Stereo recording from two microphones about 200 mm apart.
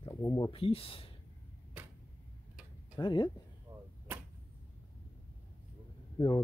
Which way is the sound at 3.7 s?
10° right (ahead or behind).